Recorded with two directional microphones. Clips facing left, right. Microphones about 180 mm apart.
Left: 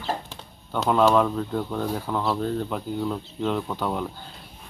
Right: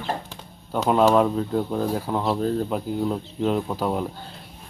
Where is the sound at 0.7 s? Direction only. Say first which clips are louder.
Right 2 dB; 15° right (ahead or behind).